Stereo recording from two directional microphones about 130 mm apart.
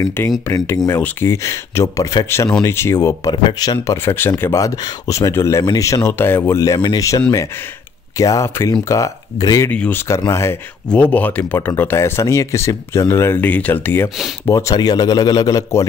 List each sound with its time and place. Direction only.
0.0 s speech: 20° left (ahead or behind)
3.3 s speech: 30° left (ahead or behind)
9.7 s speech: 15° left (ahead or behind)